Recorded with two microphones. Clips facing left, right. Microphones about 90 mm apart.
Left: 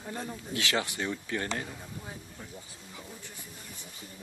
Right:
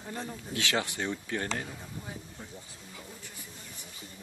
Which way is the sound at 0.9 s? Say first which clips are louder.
Even; 25° right (ahead or behind).